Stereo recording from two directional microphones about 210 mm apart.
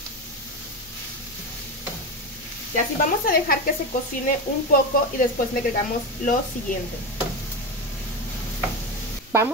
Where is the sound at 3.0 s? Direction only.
45° left (ahead or behind).